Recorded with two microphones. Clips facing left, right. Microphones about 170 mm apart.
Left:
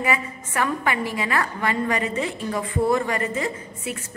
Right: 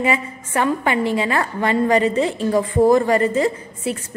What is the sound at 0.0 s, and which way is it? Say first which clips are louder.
A woman's voice: right 4 dB; 25° right (ahead or behind).